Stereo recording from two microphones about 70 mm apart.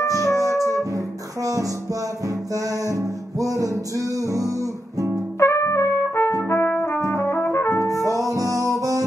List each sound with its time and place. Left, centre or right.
0.0 s music: left
0.7 s music: right
5.4 s trumpet: left
7.1 s brass instrument: left
8.2 s music: right